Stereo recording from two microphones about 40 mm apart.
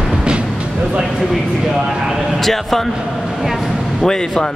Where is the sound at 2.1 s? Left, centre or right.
Centre.